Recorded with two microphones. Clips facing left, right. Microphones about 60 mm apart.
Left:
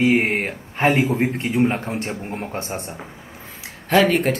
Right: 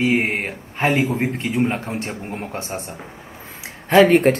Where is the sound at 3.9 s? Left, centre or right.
Right.